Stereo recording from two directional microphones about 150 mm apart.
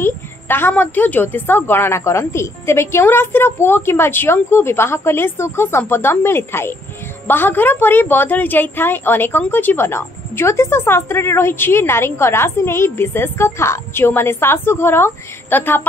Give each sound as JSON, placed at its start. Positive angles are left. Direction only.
{"t": 0.0, "sound": "a woman's voice", "side_deg": 15}